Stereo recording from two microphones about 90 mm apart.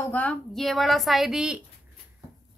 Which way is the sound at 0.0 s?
20° left (ahead or behind).